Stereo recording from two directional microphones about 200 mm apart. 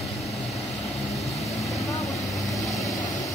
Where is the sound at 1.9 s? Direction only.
15° left (ahead or behind).